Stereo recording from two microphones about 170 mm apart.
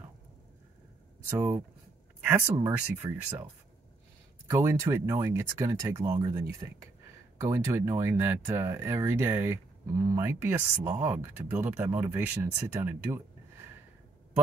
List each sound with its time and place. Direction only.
1.3 s speech: 15° right (ahead or behind)
4.5 s speech: 15° right (ahead or behind)